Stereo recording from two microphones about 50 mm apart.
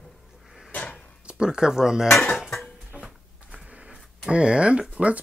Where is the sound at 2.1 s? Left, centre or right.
Centre.